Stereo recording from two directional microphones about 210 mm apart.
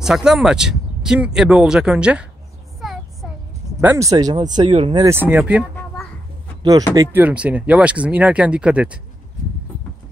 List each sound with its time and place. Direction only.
0.0 s speech: centre (ahead or behind)
2.8 s a sound: centre (ahead or behind)
3.8 s speech: 15° right (ahead or behind)
5.0 s speech: 10° right (ahead or behind)
7.0 s speech: 10° right (ahead or behind)